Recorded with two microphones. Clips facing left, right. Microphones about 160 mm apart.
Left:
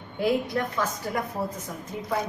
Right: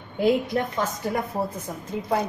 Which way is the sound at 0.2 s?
20° right (ahead or behind).